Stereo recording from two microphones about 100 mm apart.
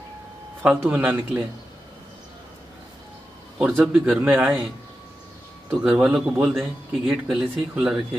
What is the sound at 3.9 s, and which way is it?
Speech, 5° right (ahead or behind).